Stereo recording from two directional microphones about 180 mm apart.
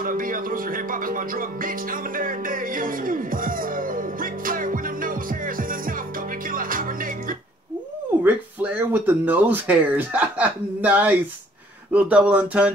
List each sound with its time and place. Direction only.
0.0 s music: 50° right (ahead or behind)
8.2 s speech: 10° right (ahead or behind)